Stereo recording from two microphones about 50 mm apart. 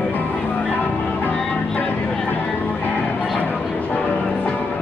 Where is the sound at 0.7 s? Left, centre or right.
Left.